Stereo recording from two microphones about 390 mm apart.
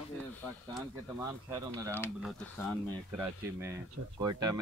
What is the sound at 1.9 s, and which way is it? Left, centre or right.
Speech, centre.